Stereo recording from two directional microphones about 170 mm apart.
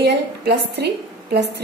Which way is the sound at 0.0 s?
75° right (ahead or behind).